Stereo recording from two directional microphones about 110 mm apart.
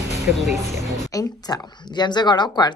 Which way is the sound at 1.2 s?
40° left (ahead or behind).